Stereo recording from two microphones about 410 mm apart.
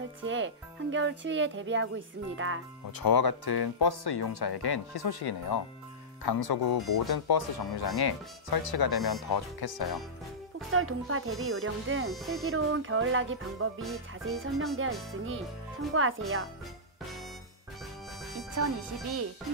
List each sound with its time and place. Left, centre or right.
0.2 s speech: right
3.0 s speech: left
10.7 s speech: right
13.8 s music: centre
14.8 s speech: right
18.2 s music: centre